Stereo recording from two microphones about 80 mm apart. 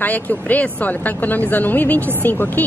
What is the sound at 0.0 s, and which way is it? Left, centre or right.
Speech, centre.